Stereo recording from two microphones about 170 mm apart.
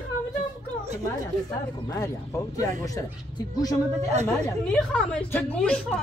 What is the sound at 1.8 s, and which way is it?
Speech, 15° left (ahead or behind).